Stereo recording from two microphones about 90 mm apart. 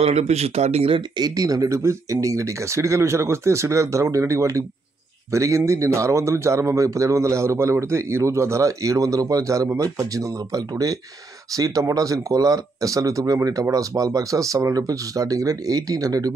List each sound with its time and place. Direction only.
1.1 s speech: 45° right (ahead or behind)